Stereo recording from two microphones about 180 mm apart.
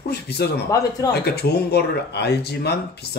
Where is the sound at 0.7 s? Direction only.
20° left (ahead or behind).